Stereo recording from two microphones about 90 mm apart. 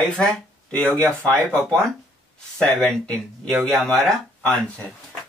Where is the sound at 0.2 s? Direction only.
10° left (ahead or behind).